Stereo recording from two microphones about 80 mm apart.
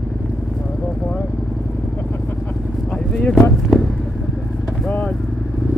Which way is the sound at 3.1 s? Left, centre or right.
Centre.